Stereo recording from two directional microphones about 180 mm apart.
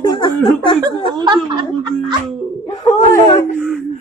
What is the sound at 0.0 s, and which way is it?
Snicker, 20° left (ahead or behind).